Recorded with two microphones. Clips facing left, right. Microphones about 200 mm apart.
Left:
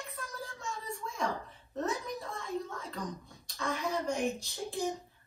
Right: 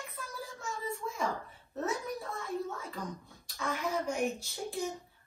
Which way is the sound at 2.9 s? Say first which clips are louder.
Left 1 dB; centre (ahead or behind).